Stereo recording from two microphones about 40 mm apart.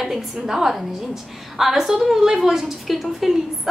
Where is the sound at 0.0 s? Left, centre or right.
Centre.